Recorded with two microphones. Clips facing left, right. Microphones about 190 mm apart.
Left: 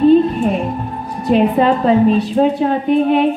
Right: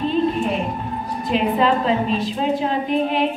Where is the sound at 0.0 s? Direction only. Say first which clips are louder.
Left 9 dB; 45° left (ahead or behind).